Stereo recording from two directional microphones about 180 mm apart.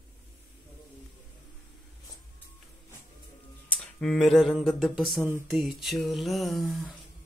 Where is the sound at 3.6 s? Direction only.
Centre (ahead or behind).